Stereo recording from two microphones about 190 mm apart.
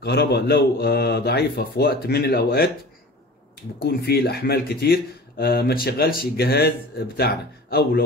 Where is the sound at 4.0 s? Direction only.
55° left (ahead or behind).